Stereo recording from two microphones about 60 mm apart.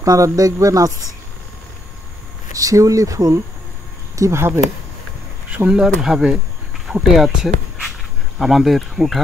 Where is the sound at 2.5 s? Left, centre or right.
Right.